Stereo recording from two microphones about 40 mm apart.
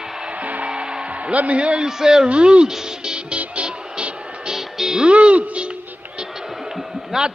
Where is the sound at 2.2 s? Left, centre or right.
Right.